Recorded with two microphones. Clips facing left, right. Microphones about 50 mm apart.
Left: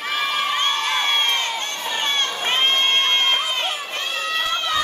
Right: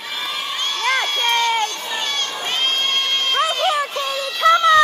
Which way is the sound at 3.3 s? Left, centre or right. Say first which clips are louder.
Right 6 dB; right.